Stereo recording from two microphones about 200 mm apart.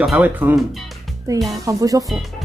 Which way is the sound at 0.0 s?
5° right (ahead or behind).